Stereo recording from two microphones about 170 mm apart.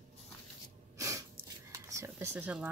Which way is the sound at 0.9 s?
20° right (ahead or behind).